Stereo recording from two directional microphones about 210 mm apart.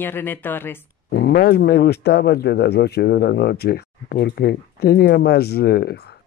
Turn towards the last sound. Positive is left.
turn(degrees=50)  # may be behind; listen again after turning